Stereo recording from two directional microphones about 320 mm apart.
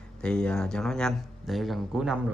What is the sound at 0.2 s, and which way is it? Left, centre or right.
Speech, centre.